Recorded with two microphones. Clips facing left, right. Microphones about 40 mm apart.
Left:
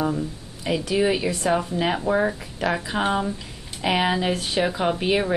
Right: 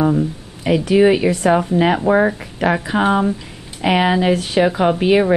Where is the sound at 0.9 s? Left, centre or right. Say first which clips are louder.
Right 9 dB; right.